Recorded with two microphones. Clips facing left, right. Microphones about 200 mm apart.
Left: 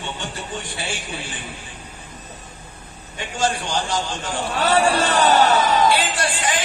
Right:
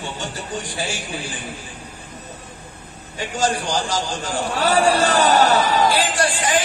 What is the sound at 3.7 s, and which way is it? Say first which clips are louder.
Speech: right 1 dB; 40° right (ahead or behind).